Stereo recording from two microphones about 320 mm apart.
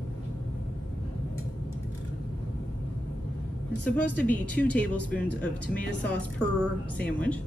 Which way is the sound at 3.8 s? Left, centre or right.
Centre.